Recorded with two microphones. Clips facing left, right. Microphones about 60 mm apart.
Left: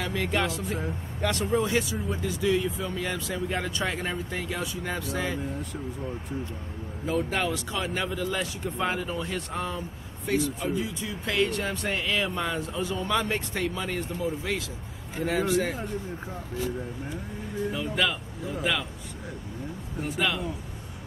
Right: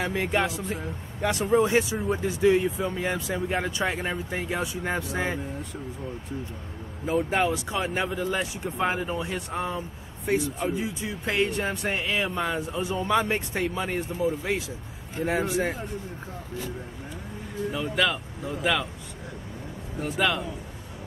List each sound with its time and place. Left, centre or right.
0.0 s speech: right
7.1 s speech: right
15.2 s speech: centre
17.7 s speech: centre
20.0 s speech: centre